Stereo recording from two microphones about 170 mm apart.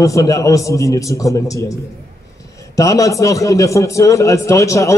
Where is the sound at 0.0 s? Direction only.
20° left (ahead or behind).